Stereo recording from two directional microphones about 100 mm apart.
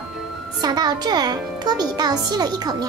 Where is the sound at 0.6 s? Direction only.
45° right (ahead or behind).